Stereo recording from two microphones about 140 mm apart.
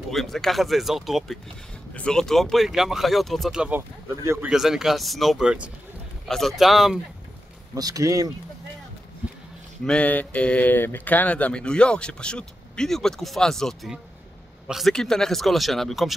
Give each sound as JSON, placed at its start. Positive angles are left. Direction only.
{"t": 0.1, "sound": "speech", "side_deg": 0}
{"t": 4.5, "sound": "speech", "side_deg": -5}
{"t": 7.7, "sound": "speech", "side_deg": -25}
{"t": 9.8, "sound": "speech", "side_deg": 10}